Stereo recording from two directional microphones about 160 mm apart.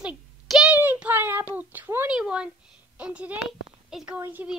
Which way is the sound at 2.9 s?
10° right (ahead or behind).